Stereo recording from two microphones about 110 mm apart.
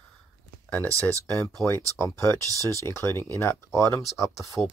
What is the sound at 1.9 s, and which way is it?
Speech, 25° left (ahead or behind).